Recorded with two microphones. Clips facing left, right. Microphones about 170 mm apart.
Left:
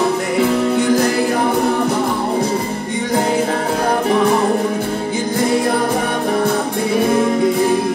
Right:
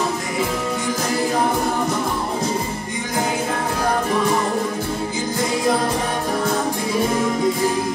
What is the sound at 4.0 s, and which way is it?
Music, 65° left (ahead or behind).